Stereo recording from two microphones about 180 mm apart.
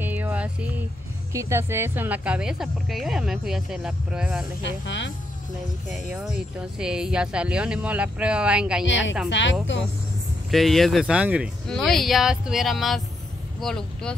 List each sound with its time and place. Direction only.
0.0 s a sound: 10° right (ahead or behind)
1.3 s speech: 15° right (ahead or behind)
4.6 s speech: 85° left
5.9 s speech: 5° right (ahead or behind)
8.8 s a woman's voice: 90° left
10.5 s speech: centre (ahead or behind)